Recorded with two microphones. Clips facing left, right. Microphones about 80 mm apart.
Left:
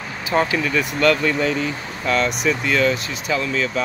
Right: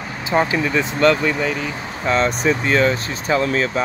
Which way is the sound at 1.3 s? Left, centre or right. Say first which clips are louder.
Left 1 dB; centre.